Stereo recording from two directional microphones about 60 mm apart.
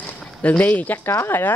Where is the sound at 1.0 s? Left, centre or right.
Left.